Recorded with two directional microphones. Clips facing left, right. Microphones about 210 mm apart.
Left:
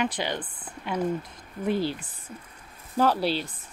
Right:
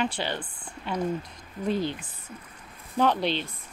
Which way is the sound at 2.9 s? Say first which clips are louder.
Left 1 dB; 5° left (ahead or behind).